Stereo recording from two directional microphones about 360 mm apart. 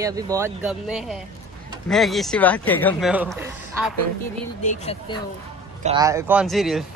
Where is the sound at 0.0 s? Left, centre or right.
Centre.